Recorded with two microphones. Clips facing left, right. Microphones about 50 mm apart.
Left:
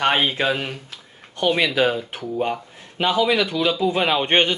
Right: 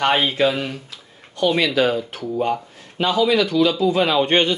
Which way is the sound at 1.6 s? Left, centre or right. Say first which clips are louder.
Right 1 dB; centre.